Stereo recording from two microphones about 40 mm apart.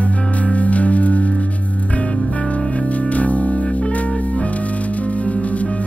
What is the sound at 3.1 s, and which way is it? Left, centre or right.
Music, left.